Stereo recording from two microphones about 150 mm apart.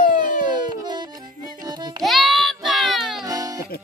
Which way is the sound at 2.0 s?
Centre (ahead or behind).